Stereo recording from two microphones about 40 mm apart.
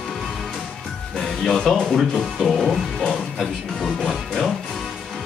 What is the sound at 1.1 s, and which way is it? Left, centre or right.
Speech, centre.